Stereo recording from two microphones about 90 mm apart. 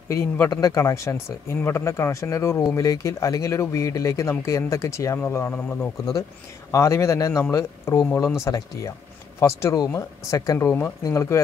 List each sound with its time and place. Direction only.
0.1 s speech: 30° left (ahead or behind)
0.5 s speech: 40° left (ahead or behind)
5.5 s speech: 15° left (ahead or behind)
6.7 s speech: 35° left (ahead or behind)